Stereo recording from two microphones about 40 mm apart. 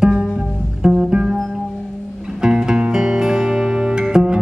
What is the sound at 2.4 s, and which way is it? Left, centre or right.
Music, centre.